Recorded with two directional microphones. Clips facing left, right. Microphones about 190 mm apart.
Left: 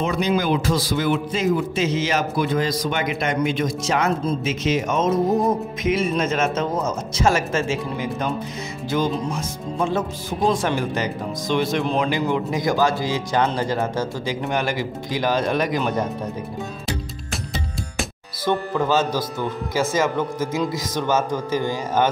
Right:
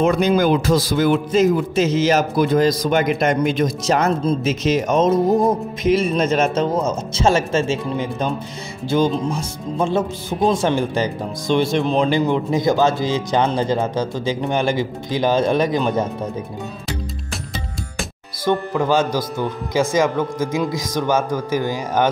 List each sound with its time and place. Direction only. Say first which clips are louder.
0.0 s a man's voice: right 5 dB; 50° right (ahead or behind); by 16.1 s 25° right (ahead or behind)
18.4 s speech: right 2 dB; 15° right (ahead or behind)